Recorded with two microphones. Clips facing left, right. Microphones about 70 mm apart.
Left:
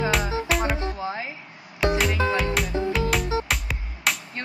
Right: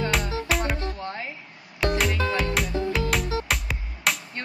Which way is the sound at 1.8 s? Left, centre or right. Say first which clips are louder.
Left 2 dB; centre.